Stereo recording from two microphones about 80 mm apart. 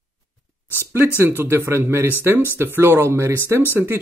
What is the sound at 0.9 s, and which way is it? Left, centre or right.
Speech, right.